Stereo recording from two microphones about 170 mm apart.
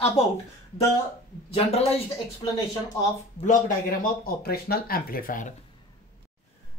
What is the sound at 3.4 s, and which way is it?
Speech, 55° left (ahead or behind).